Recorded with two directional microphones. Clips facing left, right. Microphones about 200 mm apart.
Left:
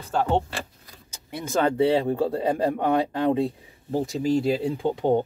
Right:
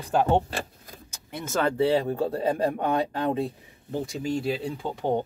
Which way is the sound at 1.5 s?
20° left (ahead or behind).